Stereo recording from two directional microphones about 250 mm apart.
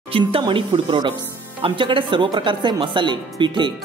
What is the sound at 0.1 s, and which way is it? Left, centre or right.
Speech, centre.